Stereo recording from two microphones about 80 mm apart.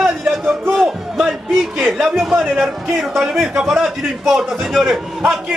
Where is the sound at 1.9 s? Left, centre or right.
Centre.